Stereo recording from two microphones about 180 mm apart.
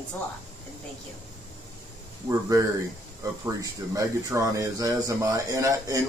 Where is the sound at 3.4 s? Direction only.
20° right (ahead or behind).